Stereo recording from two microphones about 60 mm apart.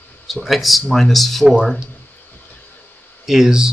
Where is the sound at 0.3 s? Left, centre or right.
Centre.